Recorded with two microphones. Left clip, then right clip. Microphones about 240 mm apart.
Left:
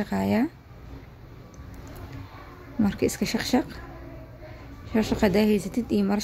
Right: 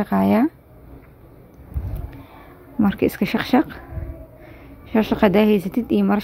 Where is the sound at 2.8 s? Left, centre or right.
Centre.